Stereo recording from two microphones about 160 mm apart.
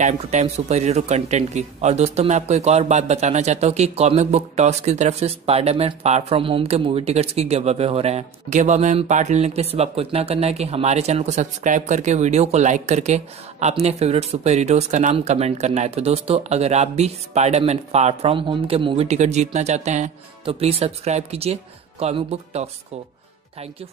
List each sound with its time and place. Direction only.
0.0 s speech: 45° right (ahead or behind)